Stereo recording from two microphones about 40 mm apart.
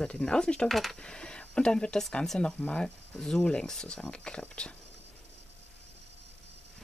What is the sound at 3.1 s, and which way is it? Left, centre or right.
Speech, centre.